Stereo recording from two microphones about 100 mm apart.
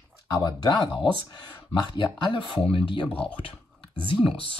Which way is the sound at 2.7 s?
55° left (ahead or behind).